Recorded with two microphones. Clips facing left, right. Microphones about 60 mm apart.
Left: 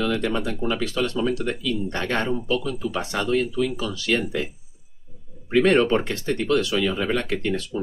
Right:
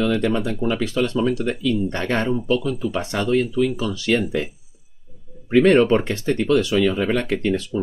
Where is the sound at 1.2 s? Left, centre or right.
Centre.